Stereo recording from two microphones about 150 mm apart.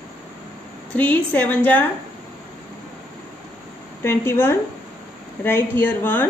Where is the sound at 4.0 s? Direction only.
15° left (ahead or behind).